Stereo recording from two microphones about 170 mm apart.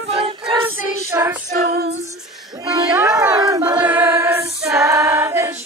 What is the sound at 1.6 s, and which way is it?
Female singing, 65° right (ahead or behind).